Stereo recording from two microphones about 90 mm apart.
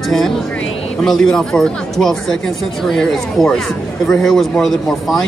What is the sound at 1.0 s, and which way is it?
Speech, 5° left (ahead or behind).